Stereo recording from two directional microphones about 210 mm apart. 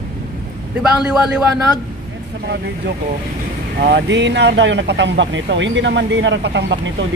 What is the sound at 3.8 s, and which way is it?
Speech, 55° right (ahead or behind).